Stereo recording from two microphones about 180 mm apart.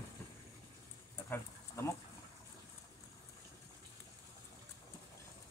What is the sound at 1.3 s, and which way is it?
Speech, 15° left (ahead or behind).